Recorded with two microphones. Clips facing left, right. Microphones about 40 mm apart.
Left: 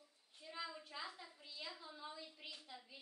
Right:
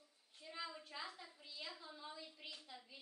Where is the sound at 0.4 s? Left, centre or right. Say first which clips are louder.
Left 1 dB; centre.